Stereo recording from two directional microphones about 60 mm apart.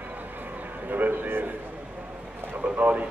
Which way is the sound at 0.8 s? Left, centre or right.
Right.